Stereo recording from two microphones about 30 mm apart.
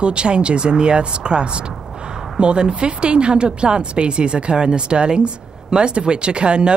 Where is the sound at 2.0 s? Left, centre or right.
Right.